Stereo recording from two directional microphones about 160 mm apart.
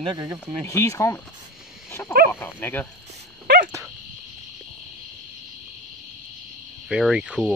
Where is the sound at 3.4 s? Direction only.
90° right.